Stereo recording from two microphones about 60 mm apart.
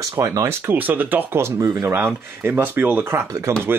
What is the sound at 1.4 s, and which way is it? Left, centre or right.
Speech, right.